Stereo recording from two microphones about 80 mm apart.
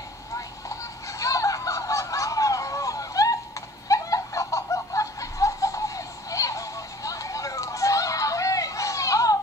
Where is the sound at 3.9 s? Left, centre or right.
Left.